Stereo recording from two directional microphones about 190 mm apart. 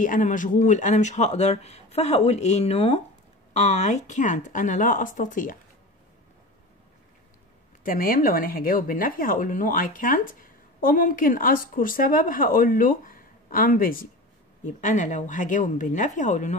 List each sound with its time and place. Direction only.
0.0 s speech: 45° left (ahead or behind)
7.8 s speech: 50° left (ahead or behind)